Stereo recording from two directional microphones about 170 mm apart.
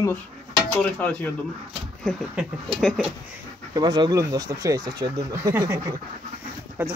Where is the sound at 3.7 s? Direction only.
25° right (ahead or behind).